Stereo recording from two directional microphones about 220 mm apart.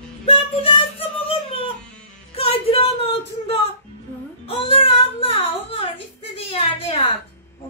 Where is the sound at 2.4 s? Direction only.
25° left (ahead or behind).